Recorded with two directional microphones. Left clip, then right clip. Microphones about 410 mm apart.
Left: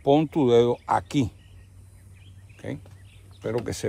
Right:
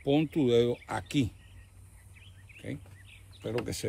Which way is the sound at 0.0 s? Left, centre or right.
Centre.